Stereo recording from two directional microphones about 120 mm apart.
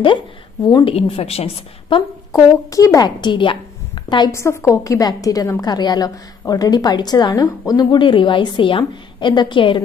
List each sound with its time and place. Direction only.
0.8 s a woman's voice: 50° left (ahead or behind)
2.3 s a woman's voice: 30° left (ahead or behind)
4.3 s a woman's voice: 25° left (ahead or behind); by 9.8 s 45° left (ahead or behind)